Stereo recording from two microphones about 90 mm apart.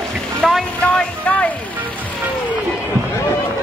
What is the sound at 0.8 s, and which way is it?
Speech, 15° left (ahead or behind).